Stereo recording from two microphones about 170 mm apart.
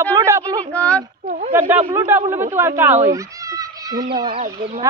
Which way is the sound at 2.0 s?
15° right (ahead or behind).